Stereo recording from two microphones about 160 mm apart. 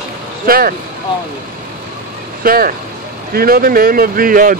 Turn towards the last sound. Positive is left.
turn(degrees=-60)  # may be behind; listen again after turning